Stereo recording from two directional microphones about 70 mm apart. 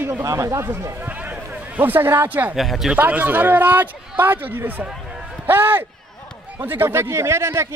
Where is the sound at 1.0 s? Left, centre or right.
Right.